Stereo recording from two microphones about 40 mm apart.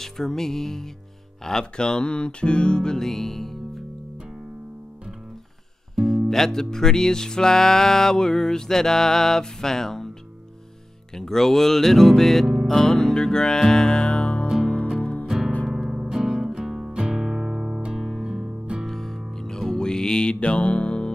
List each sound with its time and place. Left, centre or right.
0.0 s music: centre
1.4 s speech: centre
3.1 s music: centre
6.0 s music: centre
11.1 s music: centre; by 15.2 s left
15.2 s music: centre
16.8 s music: right
18.9 s music: centre; by 21.1 s left